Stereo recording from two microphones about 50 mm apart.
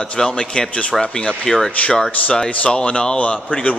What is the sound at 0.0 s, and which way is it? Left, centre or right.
A man's voice, centre.